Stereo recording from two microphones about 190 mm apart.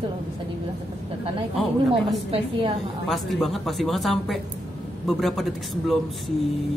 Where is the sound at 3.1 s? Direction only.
Centre (ahead or behind).